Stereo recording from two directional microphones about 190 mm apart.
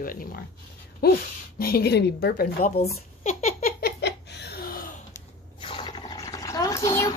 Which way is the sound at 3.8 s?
65° left (ahead or behind).